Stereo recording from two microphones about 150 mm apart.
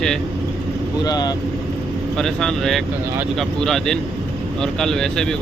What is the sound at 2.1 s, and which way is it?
Speech, 5° left (ahead or behind).